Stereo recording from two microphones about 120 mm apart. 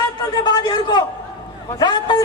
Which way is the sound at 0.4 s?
35° left (ahead or behind).